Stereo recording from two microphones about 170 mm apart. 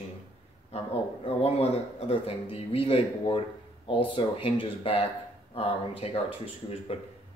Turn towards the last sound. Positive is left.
turn(degrees=35)  # may be behind; listen again after turning